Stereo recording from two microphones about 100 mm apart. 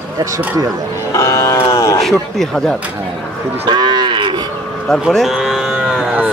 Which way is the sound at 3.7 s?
45° right (ahead or behind).